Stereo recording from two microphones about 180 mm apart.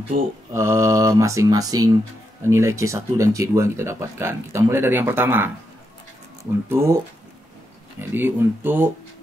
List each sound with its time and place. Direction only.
0.1 s mantra: 50° right (ahead or behind)
0.5 s speech: 15° right (ahead or behind)
6.7 s speech: 15° right (ahead or behind)
8.0 s speech: 10° right (ahead or behind)